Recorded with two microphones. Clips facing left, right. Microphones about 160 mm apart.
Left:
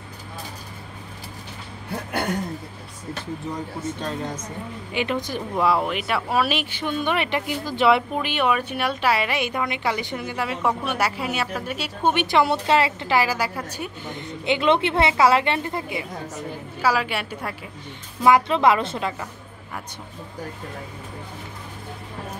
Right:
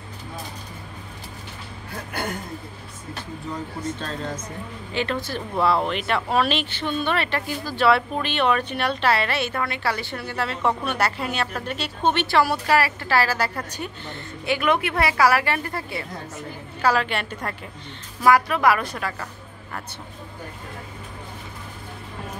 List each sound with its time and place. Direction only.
4.0 s speech: 15° left (ahead or behind)
18.2 s a woman's voice: 20° left (ahead or behind)